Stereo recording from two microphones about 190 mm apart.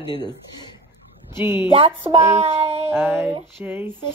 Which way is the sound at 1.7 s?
30° right (ahead or behind).